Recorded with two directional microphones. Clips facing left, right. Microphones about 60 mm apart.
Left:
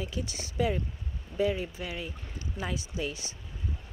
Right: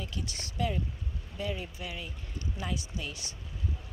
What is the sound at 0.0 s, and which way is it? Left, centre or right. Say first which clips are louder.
Speech: left 4 dB; centre.